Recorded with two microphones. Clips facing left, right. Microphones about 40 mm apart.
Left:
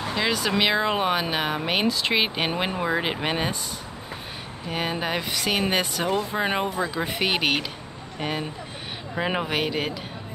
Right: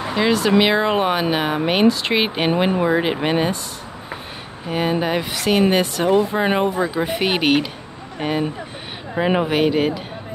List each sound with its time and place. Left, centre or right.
0.3 s speech: centre
4.6 s speech: centre